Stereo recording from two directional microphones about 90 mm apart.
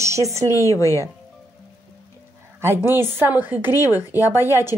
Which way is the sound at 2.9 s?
25° right (ahead or behind).